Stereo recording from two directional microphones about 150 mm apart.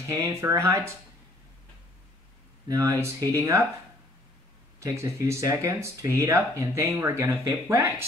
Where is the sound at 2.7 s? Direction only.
20° right (ahead or behind).